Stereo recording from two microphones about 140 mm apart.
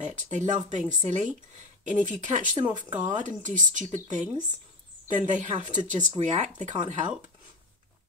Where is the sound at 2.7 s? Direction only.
35° right (ahead or behind).